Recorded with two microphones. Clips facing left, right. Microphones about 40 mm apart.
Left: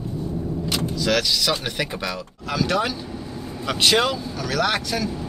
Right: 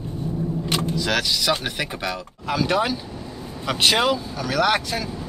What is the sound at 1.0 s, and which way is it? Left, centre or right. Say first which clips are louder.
Speech: left 5 dB; centre.